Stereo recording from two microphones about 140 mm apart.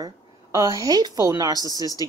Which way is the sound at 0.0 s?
25° right (ahead or behind).